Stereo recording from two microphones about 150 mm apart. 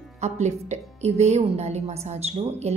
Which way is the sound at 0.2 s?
50° right (ahead or behind).